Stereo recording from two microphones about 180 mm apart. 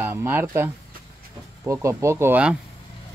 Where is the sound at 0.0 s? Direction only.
10° right (ahead or behind).